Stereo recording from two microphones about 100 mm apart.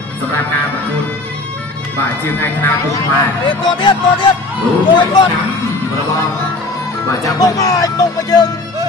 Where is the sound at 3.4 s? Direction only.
55° left (ahead or behind).